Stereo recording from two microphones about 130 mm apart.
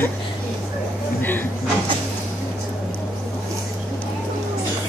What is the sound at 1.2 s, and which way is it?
Speech, 15° left (ahead or behind).